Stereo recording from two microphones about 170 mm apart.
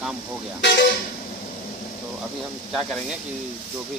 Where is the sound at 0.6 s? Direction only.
90° left.